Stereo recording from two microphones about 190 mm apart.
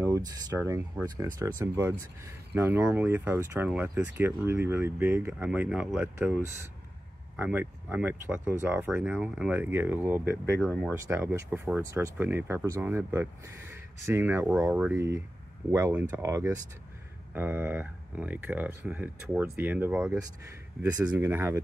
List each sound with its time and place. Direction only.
0.0 s speech: 15° right (ahead or behind)